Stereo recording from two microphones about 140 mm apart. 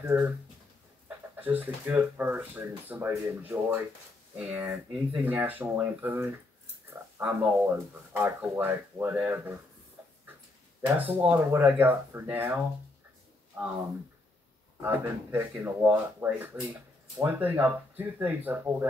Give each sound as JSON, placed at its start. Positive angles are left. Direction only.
{"t": 0.0, "sound": "speech", "side_deg": -15}
{"t": 10.9, "sound": "speech", "side_deg": -15}
{"t": 14.8, "sound": "speech", "side_deg": -10}